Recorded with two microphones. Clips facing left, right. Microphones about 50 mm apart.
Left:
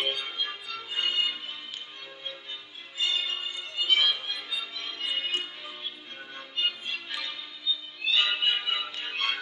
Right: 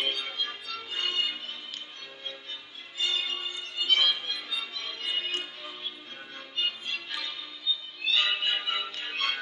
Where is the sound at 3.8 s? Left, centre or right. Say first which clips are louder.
Even; centre.